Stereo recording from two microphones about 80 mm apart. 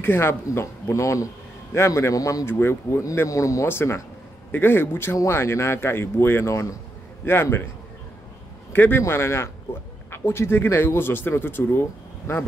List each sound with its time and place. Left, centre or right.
0.0 s a man's voice: left
2.4 s speech: left
3.6 s a man's voice: left
8.7 s a man's voice: left